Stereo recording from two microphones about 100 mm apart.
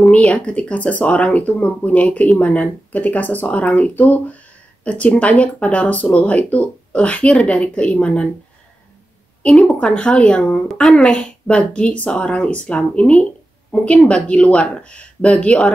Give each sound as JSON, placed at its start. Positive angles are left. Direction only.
{"t": 0.0, "sound": "speech", "side_deg": 10}
{"t": 9.4, "sound": "speech", "side_deg": 5}